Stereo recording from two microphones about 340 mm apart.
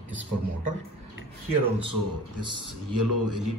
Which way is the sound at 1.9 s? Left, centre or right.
Right.